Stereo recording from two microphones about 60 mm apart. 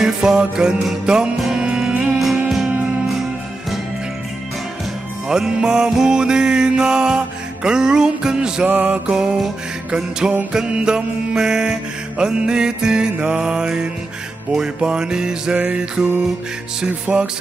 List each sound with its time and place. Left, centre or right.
0.0 s music: centre
5.3 s music: centre
8.6 s music: right
9.1 s music: centre
17.1 s music: centre